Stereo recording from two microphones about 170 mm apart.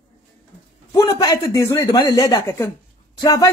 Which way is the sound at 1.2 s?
20° left (ahead or behind).